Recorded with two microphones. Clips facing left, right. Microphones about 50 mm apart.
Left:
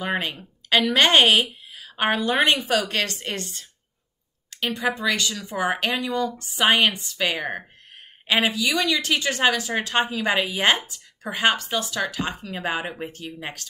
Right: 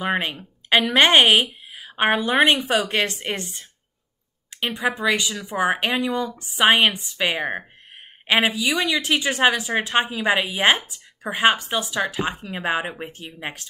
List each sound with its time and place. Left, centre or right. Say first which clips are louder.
0.0 s a woman's voice: right 2 dB; centre
4.5 s a sound: even; centre
4.9 s a woman's voice: right 2 dB; centre